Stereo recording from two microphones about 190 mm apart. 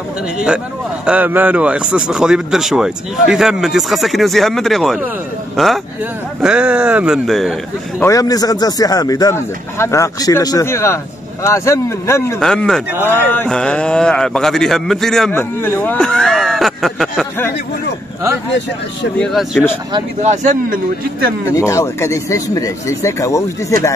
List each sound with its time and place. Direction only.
1.0 s a man's voice: 10° right (ahead or behind)
8.0 s speech: 15° left (ahead or behind)
12.4 s a man's voice: 5° left (ahead or behind)
19.1 s a man's voice: centre (ahead or behind)
20.2 s a man's voice: 40° right (ahead or behind)
21.5 s speech: 15° left (ahead or behind)